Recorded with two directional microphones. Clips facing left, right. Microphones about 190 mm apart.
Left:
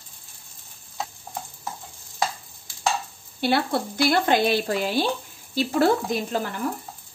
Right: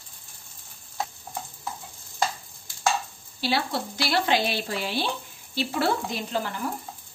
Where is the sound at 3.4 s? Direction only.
55° left (ahead or behind).